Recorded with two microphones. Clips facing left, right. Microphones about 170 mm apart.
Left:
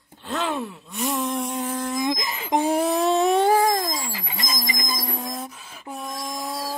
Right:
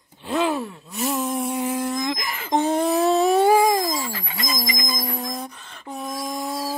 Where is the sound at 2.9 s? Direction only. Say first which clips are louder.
Right 3 dB; centre (ahead or behind).